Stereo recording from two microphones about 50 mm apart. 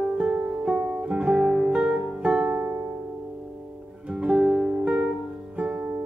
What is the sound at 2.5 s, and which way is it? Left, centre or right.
Music, right.